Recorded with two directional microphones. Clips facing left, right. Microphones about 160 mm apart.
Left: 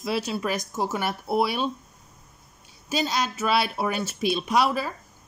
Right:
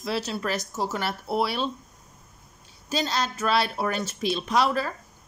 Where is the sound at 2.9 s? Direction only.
10° left (ahead or behind).